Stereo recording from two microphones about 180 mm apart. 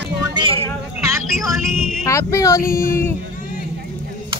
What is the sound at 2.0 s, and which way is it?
Speech, 15° left (ahead or behind).